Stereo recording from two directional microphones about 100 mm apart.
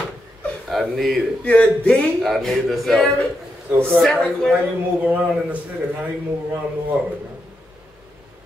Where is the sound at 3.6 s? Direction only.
20° right (ahead or behind).